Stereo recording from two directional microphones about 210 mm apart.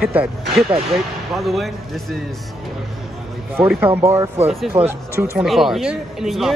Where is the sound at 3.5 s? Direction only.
10° right (ahead or behind).